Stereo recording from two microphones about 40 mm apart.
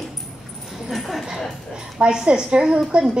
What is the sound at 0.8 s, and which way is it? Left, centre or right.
Speech, centre.